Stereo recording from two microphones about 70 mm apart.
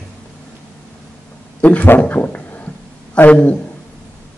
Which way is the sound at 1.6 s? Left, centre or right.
Left.